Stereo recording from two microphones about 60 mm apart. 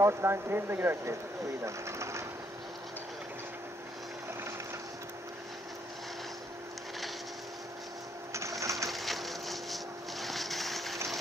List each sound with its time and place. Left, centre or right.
0.0 s speech: right
1.6 s speech: right
8.3 s sewing machine: right
8.9 s a sound: centre